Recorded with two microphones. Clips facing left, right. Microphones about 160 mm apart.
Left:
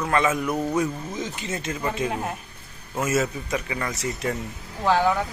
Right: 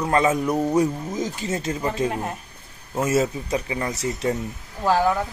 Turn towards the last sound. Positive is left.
turn(degrees=0)  # may be behind; listen again after turning